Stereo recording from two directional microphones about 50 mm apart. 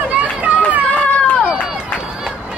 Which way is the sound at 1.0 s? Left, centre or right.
Left.